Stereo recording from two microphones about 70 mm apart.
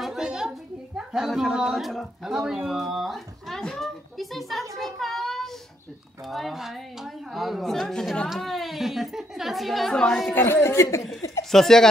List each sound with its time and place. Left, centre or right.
0.0 s a sound: centre
0.9 s speech: centre
4.7 s a sound: centre
6.2 s speech: centre
10.3 s speech: left
11.5 s speech: centre